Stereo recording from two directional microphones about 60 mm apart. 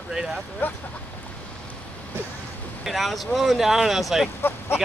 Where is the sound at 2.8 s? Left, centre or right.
Centre.